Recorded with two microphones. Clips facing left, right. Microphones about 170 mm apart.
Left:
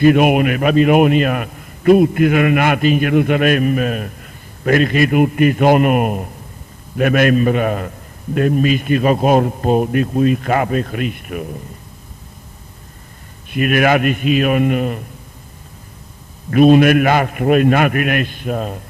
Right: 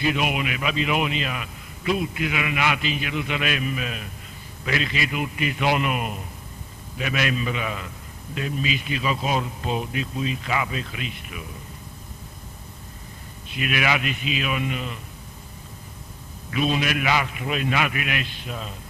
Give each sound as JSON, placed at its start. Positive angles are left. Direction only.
{"t": 0.0, "sound": "a man's voice", "side_deg": 55}
{"t": 13.5, "sound": "a man's voice", "side_deg": 50}
{"t": 16.4, "sound": "a man's voice", "side_deg": 50}